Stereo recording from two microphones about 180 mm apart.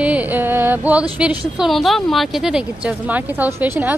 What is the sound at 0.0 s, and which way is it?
Music, 10° right (ahead or behind).